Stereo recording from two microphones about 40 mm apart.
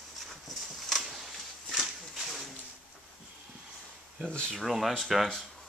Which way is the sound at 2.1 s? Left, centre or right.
Centre.